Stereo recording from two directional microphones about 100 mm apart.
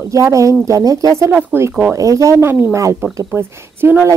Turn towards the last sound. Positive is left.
turn(degrees=-25)  # may be behind; listen again after turning